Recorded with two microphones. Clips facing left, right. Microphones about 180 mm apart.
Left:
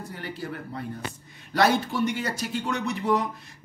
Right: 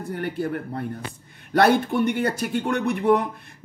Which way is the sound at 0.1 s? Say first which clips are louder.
Right 11 dB; 55° right (ahead or behind).